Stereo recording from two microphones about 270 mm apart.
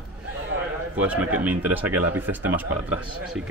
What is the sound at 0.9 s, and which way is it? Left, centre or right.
Speech, centre.